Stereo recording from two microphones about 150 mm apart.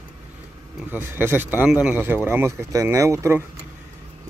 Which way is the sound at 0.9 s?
15° right (ahead or behind).